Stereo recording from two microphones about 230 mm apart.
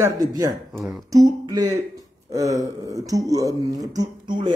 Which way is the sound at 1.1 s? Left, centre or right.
Centre.